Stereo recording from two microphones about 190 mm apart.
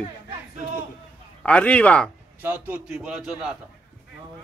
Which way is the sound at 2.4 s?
10° right (ahead or behind).